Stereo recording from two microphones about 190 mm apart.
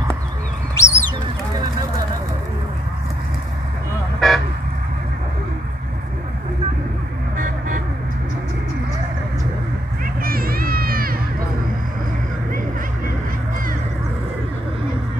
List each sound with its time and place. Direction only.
0.7 s bird: 15° left (ahead or behind)
4.2 s vehicle: centre (ahead or behind)
7.3 s vehicle: 45° right (ahead or behind)
10.2 s crowd: 50° right (ahead or behind)